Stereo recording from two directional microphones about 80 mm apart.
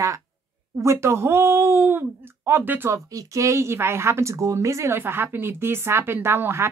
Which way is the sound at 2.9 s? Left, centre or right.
Right.